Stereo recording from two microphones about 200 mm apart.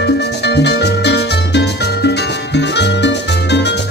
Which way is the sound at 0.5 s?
55° left (ahead or behind).